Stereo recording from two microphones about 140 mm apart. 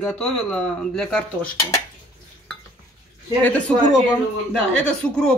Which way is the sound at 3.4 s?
10° left (ahead or behind).